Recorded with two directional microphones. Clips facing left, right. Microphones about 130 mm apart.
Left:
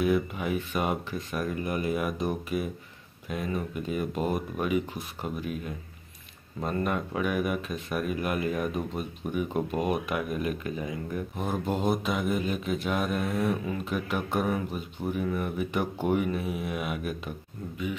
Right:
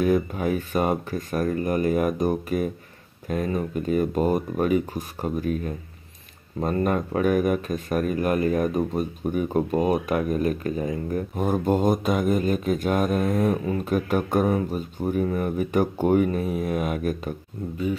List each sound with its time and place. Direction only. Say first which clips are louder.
0.0 s a man's voice: right 4 dB; 40° right (ahead or behind)